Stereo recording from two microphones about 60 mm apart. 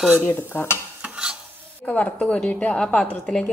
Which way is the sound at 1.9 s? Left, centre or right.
Left.